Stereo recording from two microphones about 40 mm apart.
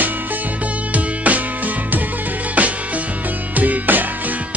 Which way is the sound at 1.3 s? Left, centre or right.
Right.